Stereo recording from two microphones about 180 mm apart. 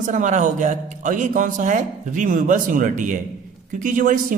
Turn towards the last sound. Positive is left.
turn(degrees=-50)  # may be behind; listen again after turning